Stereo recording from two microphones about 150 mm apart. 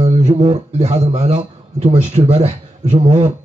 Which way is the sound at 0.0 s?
45° right (ahead or behind).